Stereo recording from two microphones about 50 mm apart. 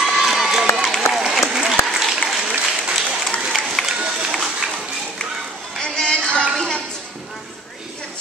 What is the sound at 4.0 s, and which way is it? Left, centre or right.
Run, right.